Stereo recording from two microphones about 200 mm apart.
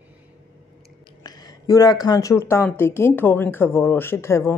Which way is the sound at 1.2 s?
20° left (ahead or behind).